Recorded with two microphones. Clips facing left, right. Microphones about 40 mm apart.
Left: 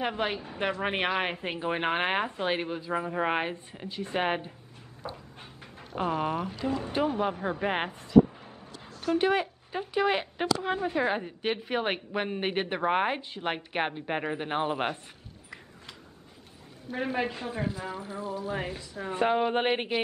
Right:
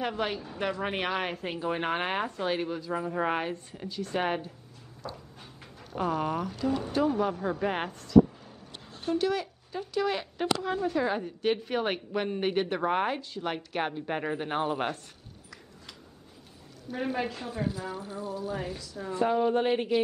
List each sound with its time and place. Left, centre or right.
0.0 s a woman's voice: left
5.0 s a sound: left
5.8 s a woman's voice: left
16.9 s a woman's voice: left
17.9 s a woman's voice: left